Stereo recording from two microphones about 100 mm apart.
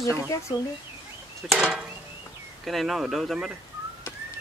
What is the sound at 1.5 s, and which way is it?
Speech, 5° left (ahead or behind).